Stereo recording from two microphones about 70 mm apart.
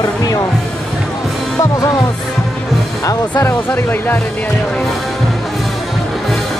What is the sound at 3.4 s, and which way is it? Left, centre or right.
Speech, left.